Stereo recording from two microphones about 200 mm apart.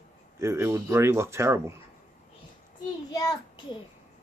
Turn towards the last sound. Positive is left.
turn(degrees=20)  # may be behind; listen again after turning